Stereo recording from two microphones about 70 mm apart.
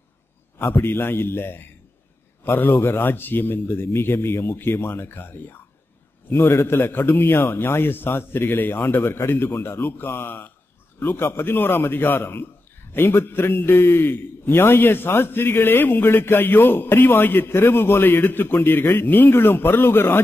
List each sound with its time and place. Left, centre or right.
0.6 s a man's voice: left